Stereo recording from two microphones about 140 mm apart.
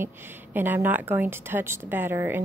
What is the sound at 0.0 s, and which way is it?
A woman's voice, 15° right (ahead or behind).